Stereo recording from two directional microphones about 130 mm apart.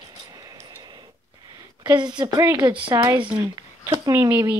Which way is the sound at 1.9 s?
35° right (ahead or behind).